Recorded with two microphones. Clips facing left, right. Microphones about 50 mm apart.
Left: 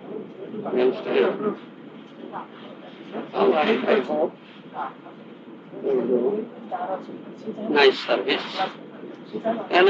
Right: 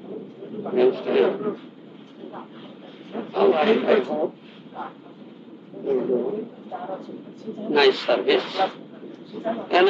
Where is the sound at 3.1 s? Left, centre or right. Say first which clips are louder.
Right 1 dB; left.